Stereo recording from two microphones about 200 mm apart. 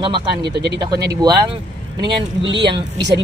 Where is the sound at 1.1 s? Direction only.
20° right (ahead or behind).